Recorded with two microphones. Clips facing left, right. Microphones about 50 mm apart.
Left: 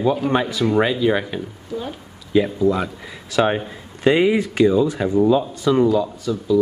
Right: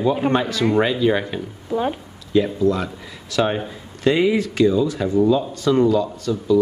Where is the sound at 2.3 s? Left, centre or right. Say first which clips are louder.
Even; centre.